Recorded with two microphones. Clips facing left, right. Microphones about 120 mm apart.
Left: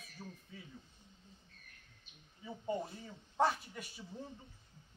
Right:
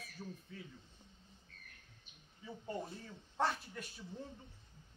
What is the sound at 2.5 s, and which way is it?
Speech, centre (ahead or behind).